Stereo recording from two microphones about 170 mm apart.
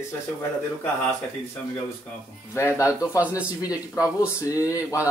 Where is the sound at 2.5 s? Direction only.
15° left (ahead or behind).